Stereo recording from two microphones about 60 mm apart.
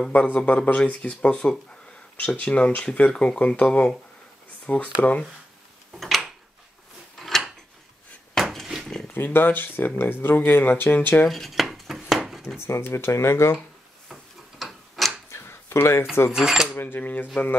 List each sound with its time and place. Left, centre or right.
0.1 s speech: left
5.9 s a sound: centre
7.2 s scissors: centre
8.4 s dishes: centre
8.8 s a sound: centre
9.1 s speech: left
11.2 s dishes: centre
12.6 s speech: left
14.6 s tick-tock: centre
15.3 s a sound: left
16.3 s speech: centre
16.7 s speech: left